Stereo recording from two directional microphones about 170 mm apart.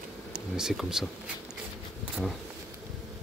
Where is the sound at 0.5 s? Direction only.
Centre (ahead or behind).